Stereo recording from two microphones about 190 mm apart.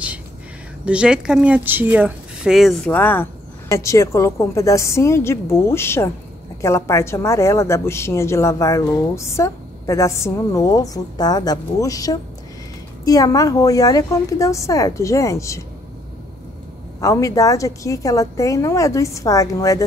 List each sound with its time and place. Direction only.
0.8 s a woman's voice: 5° right (ahead or behind); by 15.6 s 15° left (ahead or behind)
17.0 s a woman's voice: 15° left (ahead or behind)